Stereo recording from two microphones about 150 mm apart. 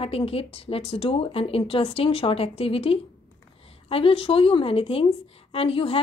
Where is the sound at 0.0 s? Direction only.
40° left (ahead or behind).